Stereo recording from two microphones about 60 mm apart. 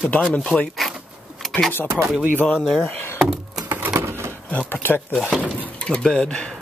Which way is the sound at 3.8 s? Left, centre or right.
Right.